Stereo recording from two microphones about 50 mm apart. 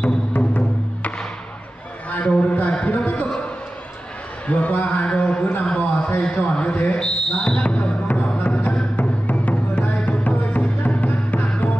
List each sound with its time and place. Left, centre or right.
0.0 s music: left
2.0 s a sound: left
4.5 s a man's voice: left
7.0 s speech: centre
8.1 s music: left